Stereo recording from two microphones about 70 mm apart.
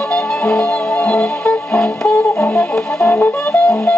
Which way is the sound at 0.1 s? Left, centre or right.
Centre.